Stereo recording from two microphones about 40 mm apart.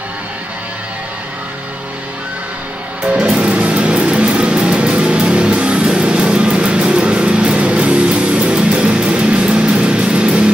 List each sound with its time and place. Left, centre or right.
3.2 s music: right